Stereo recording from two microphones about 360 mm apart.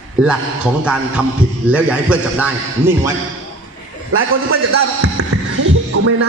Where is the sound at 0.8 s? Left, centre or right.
Centre.